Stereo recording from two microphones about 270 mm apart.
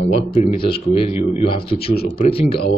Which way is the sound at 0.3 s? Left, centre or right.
Left.